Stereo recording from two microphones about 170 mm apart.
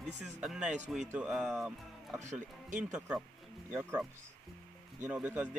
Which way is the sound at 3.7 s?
15° right (ahead or behind).